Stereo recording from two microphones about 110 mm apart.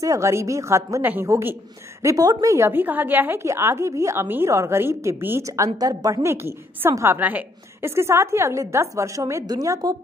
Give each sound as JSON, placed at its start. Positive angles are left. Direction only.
{"t": 0.0, "sound": "a woman's voice", "side_deg": -30}
{"t": 5.8, "sound": "a woman's voice", "side_deg": -35}
{"t": 7.2, "sound": "a woman's voice", "side_deg": -15}